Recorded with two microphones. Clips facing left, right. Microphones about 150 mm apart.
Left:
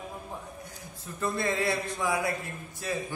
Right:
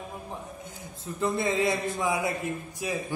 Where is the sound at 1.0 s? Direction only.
20° right (ahead or behind).